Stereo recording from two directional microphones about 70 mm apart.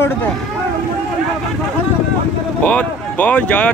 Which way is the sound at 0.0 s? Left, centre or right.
Left.